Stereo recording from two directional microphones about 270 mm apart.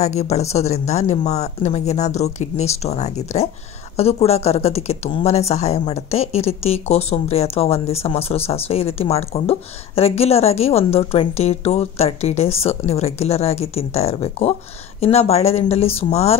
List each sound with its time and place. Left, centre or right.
0.0 s speech: left